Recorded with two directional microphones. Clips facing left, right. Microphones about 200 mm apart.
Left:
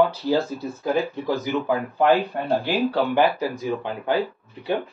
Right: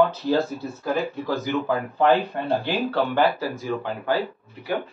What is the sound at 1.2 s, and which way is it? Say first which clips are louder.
Speech: left 1 dB; 15° left (ahead or behind).